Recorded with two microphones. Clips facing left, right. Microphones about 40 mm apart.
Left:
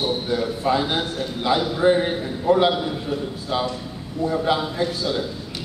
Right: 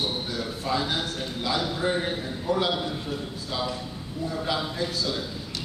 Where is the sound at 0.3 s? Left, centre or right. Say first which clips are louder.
Left 7 dB; left.